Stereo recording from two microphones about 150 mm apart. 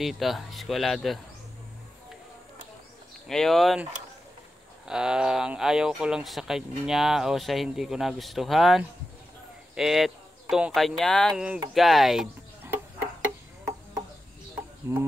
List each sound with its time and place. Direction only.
0.0 s speech: centre (ahead or behind)
3.3 s speech: centre (ahead or behind)
4.8 s speech: 5° right (ahead or behind)
14.5 s a sound: 15° right (ahead or behind)